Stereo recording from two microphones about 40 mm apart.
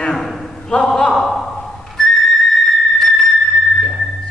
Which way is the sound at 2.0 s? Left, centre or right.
Centre.